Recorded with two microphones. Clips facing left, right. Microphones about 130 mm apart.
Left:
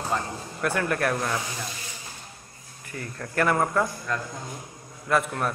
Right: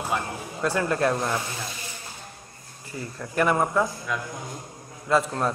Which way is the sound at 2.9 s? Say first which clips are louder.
Right 1 dB; 20° right (ahead or behind).